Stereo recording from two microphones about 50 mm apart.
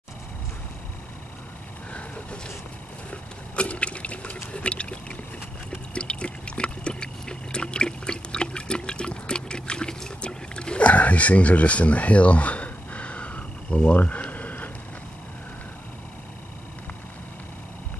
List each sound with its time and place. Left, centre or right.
1.9 s vehicle: left
3.1 s liquid: left
4.5 s boat: left
5.7 s water: left
13.9 s a sound: left